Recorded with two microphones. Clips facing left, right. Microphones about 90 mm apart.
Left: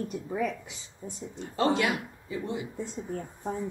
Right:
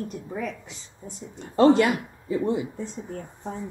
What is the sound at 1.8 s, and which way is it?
Speech, 50° right (ahead or behind).